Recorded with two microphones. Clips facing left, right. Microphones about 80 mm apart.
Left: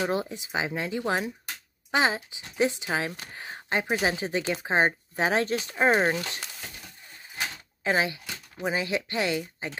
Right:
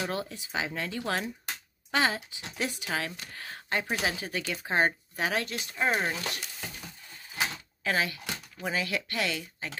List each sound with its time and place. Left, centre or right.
0.0 s speech: left
7.8 s speech: left